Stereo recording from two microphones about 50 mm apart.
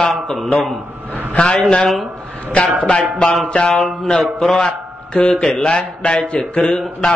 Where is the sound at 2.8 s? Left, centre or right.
Centre.